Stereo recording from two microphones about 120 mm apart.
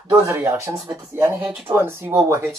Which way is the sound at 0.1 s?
20° right (ahead or behind).